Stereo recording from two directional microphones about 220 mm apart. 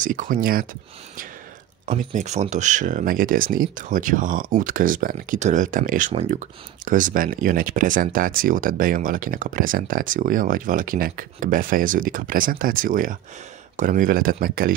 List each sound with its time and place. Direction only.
0.0 s speech: 35° right (ahead or behind)
1.9 s speech: 30° right (ahead or behind)